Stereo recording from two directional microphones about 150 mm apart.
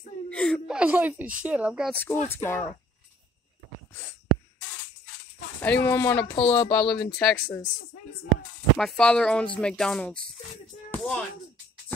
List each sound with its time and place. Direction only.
0.3 s whimper: 5° left (ahead or behind)
0.7 s speech: 10° right (ahead or behind)
2.2 s speech: 15° left (ahead or behind)
5.6 s speech: 10° left (ahead or behind)
6.3 s speech: 35° left (ahead or behind)
7.0 s speech: 5° left (ahead or behind)
8.7 s speech: 5° left (ahead or behind)